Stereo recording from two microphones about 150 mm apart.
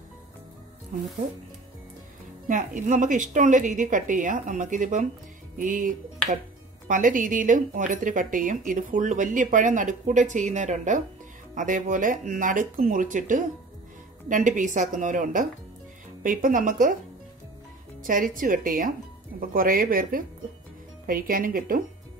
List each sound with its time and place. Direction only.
0.9 s speech: 60° right (ahead or behind)
2.4 s speech: 60° right (ahead or behind)
18.0 s speech: 65° right (ahead or behind)